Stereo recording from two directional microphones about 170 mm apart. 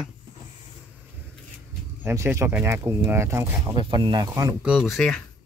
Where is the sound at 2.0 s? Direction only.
15° right (ahead or behind).